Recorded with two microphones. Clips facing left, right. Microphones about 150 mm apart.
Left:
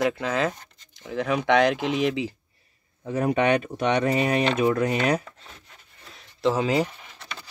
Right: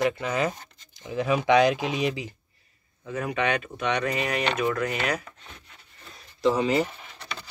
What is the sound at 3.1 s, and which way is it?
Speech, 35° left (ahead or behind).